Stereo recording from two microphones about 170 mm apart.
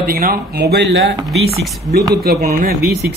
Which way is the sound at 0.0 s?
60° right (ahead or behind).